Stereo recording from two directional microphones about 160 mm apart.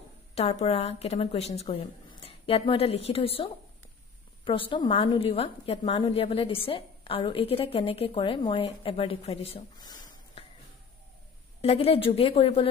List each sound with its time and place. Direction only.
0.3 s a woman's voice: 40° left (ahead or behind)
4.5 s a woman's voice: 35° left (ahead or behind)
11.6 s a woman's voice: 35° left (ahead or behind)